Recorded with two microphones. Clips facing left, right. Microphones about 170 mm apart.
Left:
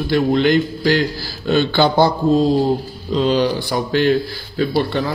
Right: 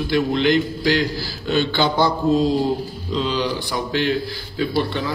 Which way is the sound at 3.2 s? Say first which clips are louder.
Left 6 dB; 45° left (ahead or behind).